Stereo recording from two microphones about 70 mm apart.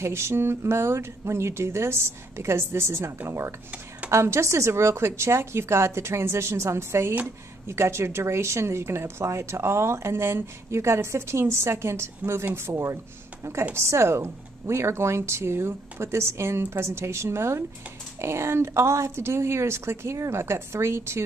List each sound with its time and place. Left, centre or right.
0.0 s speech: right